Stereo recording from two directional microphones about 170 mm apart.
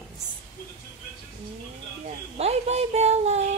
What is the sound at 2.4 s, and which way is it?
Speech, 40° right (ahead or behind).